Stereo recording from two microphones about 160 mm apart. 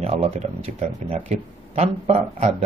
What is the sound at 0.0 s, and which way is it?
Speech, 40° right (ahead or behind).